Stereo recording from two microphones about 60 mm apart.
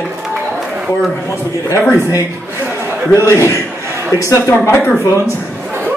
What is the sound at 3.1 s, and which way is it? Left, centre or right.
Speech, left.